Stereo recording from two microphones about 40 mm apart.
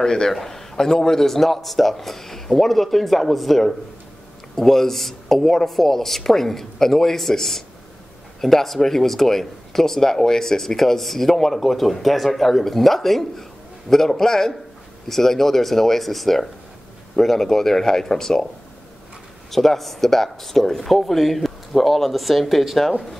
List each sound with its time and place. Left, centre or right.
0.0 s a man's voice: centre
19.5 s a man's voice: centre